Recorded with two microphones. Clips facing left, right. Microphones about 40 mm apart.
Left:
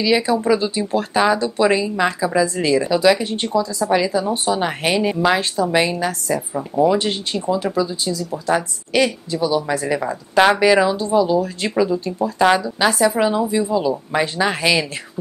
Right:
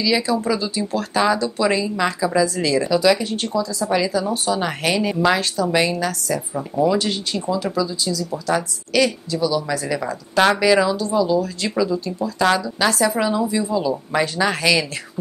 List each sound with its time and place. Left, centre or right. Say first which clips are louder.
0.0 s speech: left 2 dB; left
1.1 s a woman's voice: left 1 dB; centre
5.1 s a woman's voice: right 1 dB; centre
5.4 s speech: left 1 dB; left
6.5 s a woman's voice: left 3 dB; centre
7.0 s a woman's voice: left 1 dB; left